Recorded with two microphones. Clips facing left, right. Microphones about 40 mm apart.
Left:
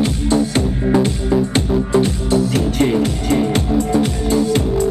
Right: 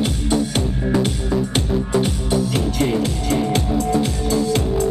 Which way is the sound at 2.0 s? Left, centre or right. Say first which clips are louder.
Left 4 dB; left.